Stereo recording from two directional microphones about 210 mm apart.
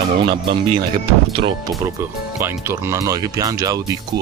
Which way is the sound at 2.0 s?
10° right (ahead or behind).